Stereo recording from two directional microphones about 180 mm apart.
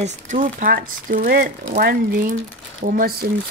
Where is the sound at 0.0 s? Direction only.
45° right (ahead or behind).